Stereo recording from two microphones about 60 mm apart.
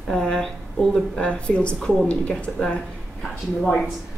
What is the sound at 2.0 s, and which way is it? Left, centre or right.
Speech, centre.